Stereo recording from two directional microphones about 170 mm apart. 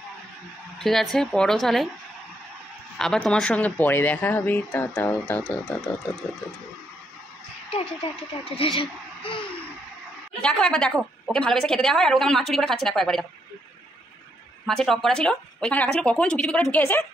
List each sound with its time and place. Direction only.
0.7 s a woman's voice: centre (ahead or behind)
3.0 s a woman's voice: 5° left (ahead or behind)
7.7 s speech: 30° left (ahead or behind)
10.4 s a woman's voice: 5° left (ahead or behind)
14.7 s a woman's voice: centre (ahead or behind)